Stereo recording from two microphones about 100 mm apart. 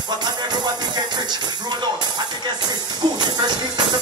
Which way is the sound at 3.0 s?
50° right (ahead or behind).